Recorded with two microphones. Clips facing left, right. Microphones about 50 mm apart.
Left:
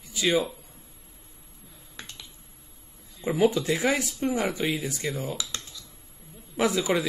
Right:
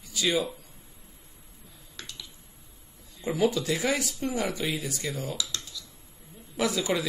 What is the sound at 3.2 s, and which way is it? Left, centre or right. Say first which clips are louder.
Speech: left 3 dB; centre.